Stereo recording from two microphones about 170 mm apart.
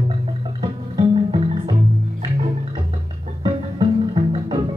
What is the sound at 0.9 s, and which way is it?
Music, 25° right (ahead or behind).